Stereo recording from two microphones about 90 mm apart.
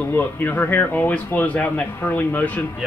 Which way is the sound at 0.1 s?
20° left (ahead or behind).